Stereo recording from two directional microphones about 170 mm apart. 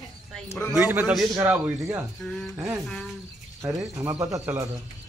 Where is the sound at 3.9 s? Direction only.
20° right (ahead or behind).